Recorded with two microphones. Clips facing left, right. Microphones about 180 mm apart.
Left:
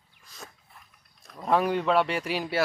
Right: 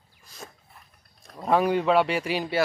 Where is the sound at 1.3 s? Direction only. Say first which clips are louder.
Right 2 dB; centre (ahead or behind).